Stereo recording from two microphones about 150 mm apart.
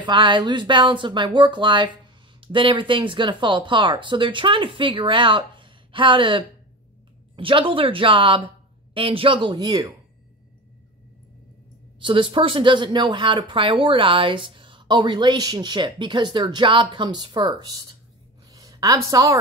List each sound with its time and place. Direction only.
0.0 s speech: 35° right (ahead or behind)
12.0 s speech: 35° right (ahead or behind)
18.5 s a sound: 25° right (ahead or behind)